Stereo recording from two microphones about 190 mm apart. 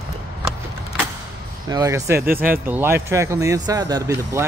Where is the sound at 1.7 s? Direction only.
20° right (ahead or behind).